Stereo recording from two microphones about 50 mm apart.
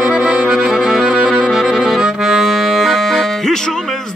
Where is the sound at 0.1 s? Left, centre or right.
Right.